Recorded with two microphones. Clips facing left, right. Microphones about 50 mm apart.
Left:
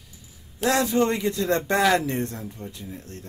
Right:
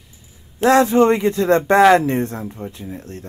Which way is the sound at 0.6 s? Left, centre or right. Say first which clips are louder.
Right 8 dB; right.